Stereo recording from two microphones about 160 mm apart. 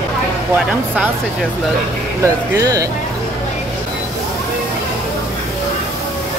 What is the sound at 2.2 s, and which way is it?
Speech, 20° right (ahead or behind).